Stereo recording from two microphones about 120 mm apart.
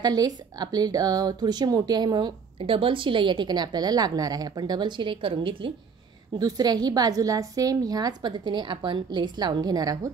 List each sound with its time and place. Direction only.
0.0 s speech: 30° right (ahead or behind)
6.3 s speech: 35° right (ahead or behind)